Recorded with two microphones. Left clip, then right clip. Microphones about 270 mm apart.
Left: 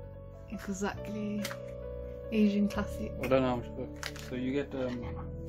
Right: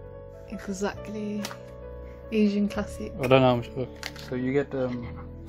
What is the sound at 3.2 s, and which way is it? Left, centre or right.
Speech, right.